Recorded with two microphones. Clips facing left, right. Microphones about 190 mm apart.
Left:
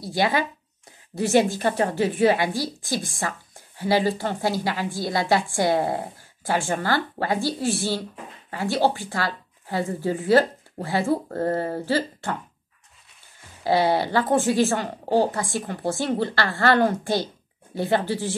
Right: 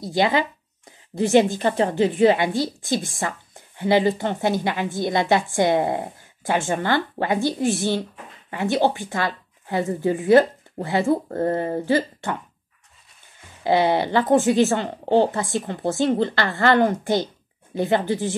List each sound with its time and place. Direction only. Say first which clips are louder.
0.0 s a woman's voice: right 3 dB; 20° right (ahead or behind)
13.7 s a woman's voice: right 2 dB; 20° right (ahead or behind)